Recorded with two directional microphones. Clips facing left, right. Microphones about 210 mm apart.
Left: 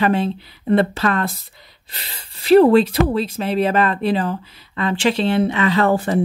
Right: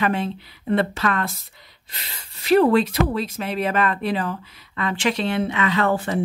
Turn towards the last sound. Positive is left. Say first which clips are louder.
# left 4 dB
turn(degrees=35)  # may be behind; listen again after turning